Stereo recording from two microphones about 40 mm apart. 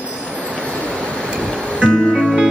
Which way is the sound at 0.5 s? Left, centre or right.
Left.